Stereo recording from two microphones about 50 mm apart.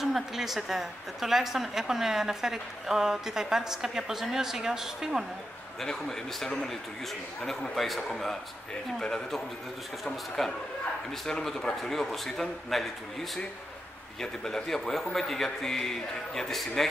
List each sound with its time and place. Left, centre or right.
0.0 s a woman's voice: centre
5.8 s a man's voice: centre
14.2 s a man's voice: centre